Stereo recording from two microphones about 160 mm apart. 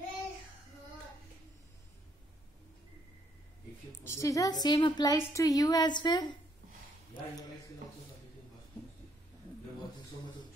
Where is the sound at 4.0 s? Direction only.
20° left (ahead or behind).